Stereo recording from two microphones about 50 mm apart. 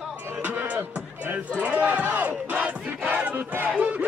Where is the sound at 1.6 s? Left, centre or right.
Right.